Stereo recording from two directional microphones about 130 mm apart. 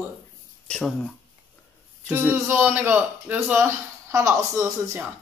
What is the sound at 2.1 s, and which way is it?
Speech, 15° right (ahead or behind).